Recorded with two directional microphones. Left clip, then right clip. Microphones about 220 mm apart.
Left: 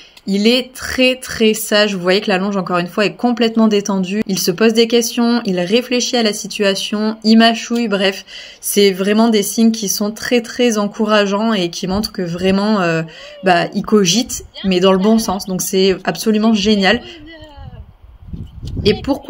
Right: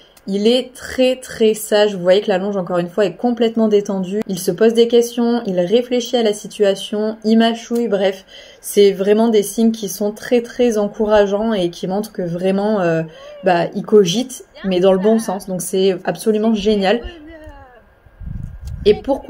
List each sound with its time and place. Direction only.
0.3 s speech: 45° left (ahead or behind)